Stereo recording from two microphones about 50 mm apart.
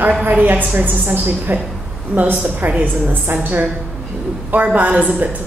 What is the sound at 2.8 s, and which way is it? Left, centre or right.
Speech, right.